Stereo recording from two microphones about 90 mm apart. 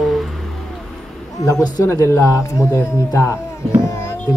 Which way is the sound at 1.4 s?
40° left (ahead or behind).